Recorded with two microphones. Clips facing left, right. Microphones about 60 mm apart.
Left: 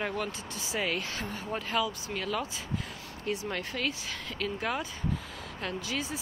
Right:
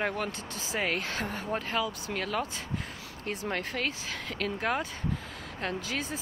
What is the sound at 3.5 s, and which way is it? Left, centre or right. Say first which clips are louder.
Speech: right 1 dB; right.